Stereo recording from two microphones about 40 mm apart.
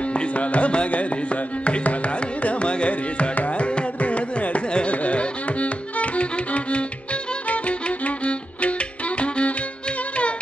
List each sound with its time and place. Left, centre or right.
0.1 s carnatic music: left
7.4 s music: left